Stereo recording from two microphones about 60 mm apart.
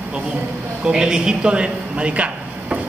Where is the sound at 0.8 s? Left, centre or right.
Centre.